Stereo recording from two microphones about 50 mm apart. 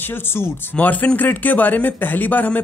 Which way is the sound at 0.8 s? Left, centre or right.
Left.